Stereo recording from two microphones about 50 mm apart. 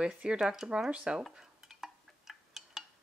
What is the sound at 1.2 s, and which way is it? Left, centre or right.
Dishes, centre.